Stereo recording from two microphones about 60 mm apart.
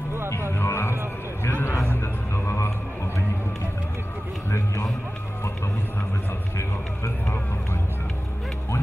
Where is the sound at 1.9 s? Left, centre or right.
Left.